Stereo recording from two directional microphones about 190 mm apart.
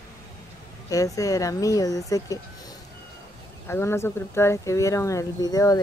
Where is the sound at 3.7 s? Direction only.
15° left (ahead or behind).